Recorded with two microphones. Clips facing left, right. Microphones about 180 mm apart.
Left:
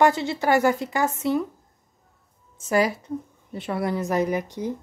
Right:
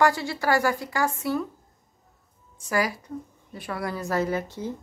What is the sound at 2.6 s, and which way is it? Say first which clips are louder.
Speech: left 4 dB; 25° left (ahead or behind).